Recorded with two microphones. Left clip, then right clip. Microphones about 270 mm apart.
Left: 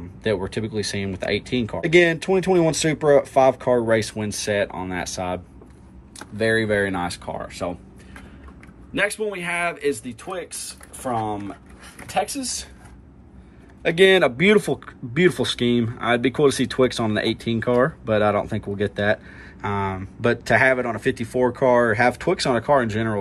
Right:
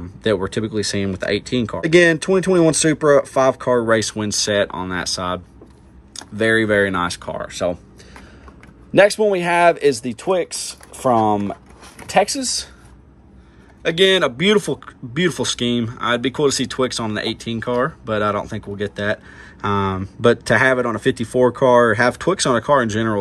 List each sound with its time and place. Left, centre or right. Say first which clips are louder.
0.2 s speech: right 4 dB; centre
8.9 s speech: right 10 dB; centre
13.8 s speech: even; centre